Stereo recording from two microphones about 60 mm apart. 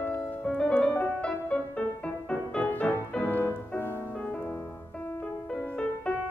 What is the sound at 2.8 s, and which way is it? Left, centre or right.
Music, centre.